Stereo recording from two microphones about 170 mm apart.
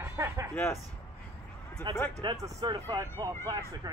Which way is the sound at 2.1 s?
20° right (ahead or behind).